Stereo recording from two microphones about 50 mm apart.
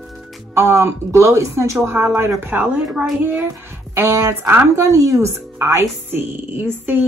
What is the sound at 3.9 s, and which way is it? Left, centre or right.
Speech, right.